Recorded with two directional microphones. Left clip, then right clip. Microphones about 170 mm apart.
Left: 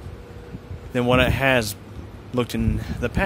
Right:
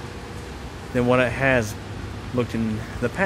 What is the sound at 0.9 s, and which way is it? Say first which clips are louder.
Speech: even; 35° left (ahead or behind).